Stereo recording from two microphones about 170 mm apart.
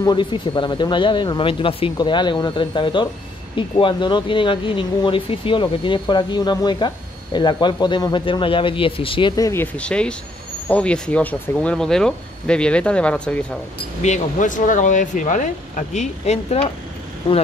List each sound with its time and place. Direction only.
0.0 s speech: 25° left (ahead or behind)
9.4 s speech: 15° left (ahead or behind)
14.0 s speech: 45° left (ahead or behind)